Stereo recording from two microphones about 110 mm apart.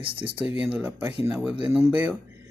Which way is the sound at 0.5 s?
15° right (ahead or behind).